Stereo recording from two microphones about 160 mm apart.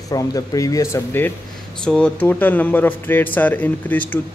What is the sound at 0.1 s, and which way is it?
Speech, 25° left (ahead or behind).